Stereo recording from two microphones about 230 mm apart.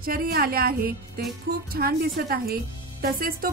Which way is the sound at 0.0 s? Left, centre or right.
Right.